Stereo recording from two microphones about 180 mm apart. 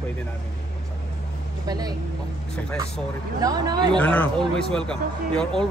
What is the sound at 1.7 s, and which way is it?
Speech, 20° right (ahead or behind).